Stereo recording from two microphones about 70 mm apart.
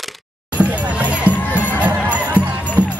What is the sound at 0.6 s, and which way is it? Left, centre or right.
Music, centre.